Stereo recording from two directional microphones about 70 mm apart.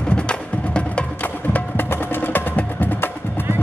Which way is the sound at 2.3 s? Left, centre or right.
Left.